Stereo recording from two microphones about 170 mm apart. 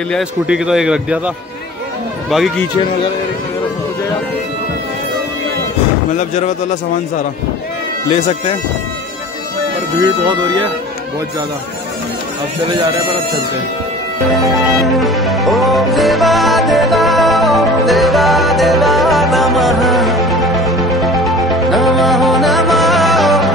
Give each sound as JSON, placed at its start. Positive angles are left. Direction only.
{"t": 0.1, "sound": "a man's voice", "side_deg": -5}
{"t": 6.1, "sound": "speech", "side_deg": 45}
{"t": 8.1, "sound": "speech", "side_deg": 35}
{"t": 10.2, "sound": "speech", "side_deg": -25}
{"t": 15.0, "sound": "music", "side_deg": 0}